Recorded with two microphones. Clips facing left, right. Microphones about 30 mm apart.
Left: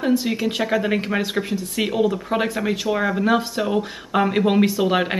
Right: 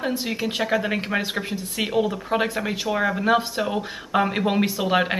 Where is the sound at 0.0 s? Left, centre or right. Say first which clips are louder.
Left 5 dB; centre.